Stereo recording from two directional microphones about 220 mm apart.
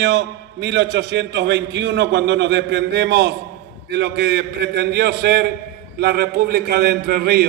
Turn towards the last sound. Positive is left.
turn(degrees=-45)  # may be behind; listen again after turning